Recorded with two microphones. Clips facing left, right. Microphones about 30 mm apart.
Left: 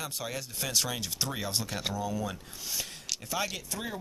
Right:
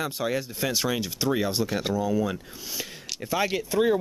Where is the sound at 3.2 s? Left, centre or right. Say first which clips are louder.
Right 9 dB; centre.